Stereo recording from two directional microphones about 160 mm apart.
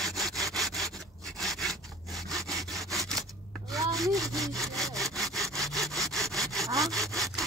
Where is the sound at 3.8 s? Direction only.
20° right (ahead or behind).